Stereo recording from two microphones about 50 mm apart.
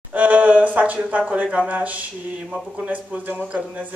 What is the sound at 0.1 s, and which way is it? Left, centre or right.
Speech, right.